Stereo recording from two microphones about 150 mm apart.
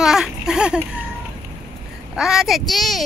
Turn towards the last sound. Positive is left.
turn(degrees=0)  # may be behind; listen again after turning